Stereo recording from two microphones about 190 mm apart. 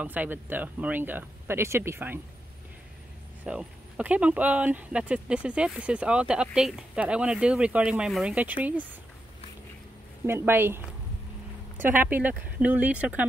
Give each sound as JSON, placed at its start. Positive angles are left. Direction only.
{"t": 0.0, "sound": "speech", "side_deg": -10}
{"t": 3.4, "sound": "speech", "side_deg": -5}
{"t": 10.2, "sound": "speech", "side_deg": -10}
{"t": 11.8, "sound": "speech", "side_deg": -10}